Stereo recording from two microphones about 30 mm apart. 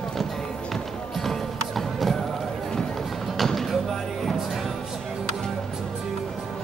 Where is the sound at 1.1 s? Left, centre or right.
Centre.